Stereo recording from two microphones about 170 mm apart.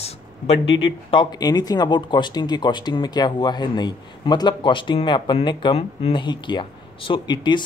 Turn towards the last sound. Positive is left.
turn(degrees=25)  # may be behind; listen again after turning